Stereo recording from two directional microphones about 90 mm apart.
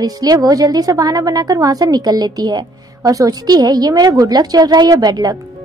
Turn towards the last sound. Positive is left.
turn(degrees=-50)  # may be behind; listen again after turning